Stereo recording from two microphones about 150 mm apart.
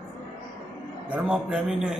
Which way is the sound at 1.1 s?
5° right (ahead or behind).